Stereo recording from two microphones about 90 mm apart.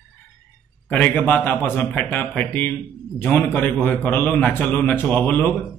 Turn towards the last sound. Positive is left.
turn(degrees=20)  # may be behind; listen again after turning